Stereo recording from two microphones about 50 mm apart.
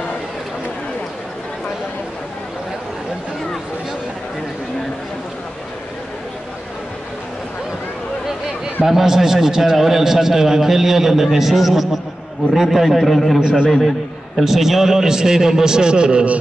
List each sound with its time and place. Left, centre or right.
8.8 s a man's voice: centre
13.4 s a man's voice: centre
13.7 s a man's voice: centre